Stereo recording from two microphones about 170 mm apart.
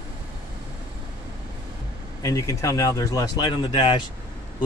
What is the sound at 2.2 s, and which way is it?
Speech, 20° left (ahead or behind).